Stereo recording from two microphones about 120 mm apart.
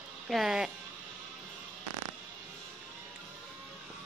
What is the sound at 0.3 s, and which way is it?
Speech, 5° right (ahead or behind).